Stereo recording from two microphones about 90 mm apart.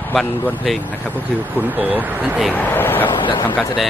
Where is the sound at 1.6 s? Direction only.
20° right (ahead or behind).